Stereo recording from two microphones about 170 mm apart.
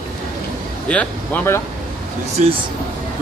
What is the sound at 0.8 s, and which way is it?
Speech, 10° left (ahead or behind).